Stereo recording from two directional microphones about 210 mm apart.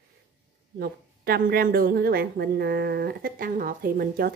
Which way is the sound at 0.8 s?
45° right (ahead or behind).